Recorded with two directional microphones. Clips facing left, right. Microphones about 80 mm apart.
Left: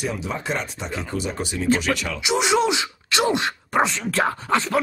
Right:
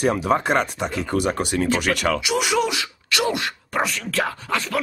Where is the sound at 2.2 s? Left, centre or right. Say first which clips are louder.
Left 1 dB; left.